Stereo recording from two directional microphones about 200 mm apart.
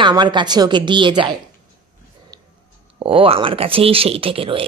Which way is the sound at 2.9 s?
25° right (ahead or behind).